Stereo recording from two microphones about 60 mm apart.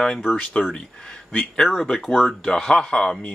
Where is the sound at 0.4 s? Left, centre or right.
Left.